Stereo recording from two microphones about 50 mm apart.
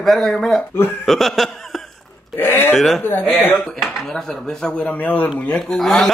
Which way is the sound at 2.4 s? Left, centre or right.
Left.